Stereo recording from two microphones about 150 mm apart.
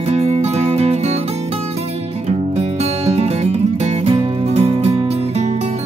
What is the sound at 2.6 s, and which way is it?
Music, 45° right (ahead or behind).